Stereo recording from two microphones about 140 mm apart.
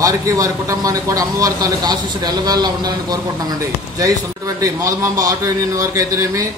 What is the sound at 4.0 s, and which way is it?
A man's voice, 25° right (ahead or behind).